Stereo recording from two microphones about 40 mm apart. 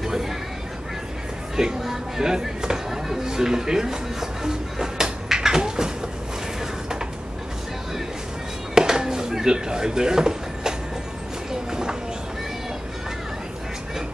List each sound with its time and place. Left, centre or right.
0.0 s vehicle: centre
1.8 s chop: centre
8.7 s a sound: centre
11.7 s clip-clop: centre